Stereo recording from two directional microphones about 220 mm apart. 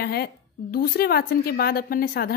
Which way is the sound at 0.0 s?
45° left (ahead or behind).